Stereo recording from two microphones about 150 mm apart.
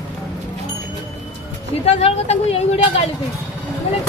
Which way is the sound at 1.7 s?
45° left (ahead or behind).